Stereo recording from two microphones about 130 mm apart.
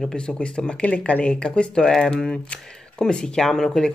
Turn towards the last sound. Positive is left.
turn(degrees=5)  # may be behind; listen again after turning